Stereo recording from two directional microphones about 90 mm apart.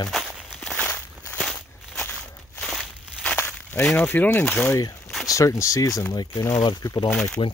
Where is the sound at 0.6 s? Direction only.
10° left (ahead or behind).